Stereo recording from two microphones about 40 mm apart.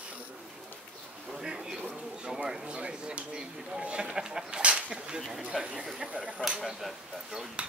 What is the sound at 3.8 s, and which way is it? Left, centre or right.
Speech, right.